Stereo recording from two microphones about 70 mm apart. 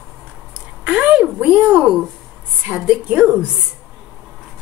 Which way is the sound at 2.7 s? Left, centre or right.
Centre.